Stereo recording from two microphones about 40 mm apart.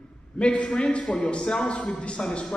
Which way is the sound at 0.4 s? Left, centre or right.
Left.